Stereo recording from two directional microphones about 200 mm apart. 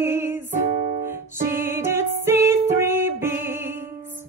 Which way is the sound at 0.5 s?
35° right (ahead or behind).